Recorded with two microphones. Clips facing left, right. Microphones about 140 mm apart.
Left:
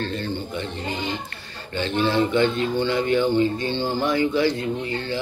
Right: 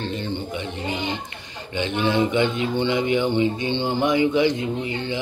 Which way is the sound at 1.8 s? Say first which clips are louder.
Even; 15° right (ahead or behind).